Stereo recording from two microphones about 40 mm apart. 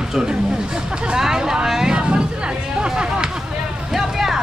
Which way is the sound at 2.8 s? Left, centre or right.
Right.